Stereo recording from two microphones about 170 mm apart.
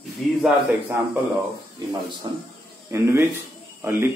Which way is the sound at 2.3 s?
25° right (ahead or behind).